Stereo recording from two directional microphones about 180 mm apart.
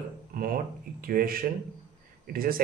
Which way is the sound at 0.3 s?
55° right (ahead or behind).